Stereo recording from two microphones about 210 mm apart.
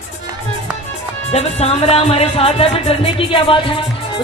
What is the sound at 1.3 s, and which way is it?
Speech, 30° left (ahead or behind).